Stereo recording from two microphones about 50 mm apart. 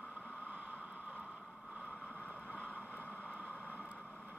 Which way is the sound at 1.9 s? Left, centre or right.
Left.